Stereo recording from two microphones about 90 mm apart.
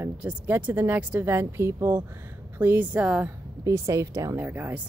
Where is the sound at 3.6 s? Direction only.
35° right (ahead or behind).